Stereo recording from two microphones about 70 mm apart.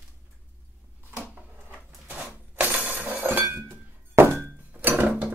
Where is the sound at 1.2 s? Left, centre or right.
Right.